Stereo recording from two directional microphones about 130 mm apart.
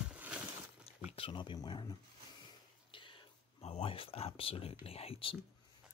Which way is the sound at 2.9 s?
40° left (ahead or behind).